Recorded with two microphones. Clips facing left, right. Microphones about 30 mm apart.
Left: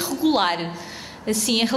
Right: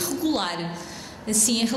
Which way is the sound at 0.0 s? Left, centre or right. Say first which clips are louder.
Left 5 dB; left.